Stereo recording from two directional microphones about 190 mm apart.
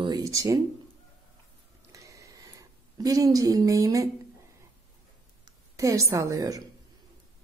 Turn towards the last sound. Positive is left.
turn(degrees=-20)  # may be behind; listen again after turning